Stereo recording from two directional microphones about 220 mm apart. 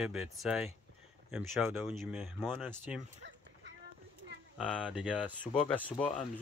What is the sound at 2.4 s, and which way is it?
Speech, 5° left (ahead or behind).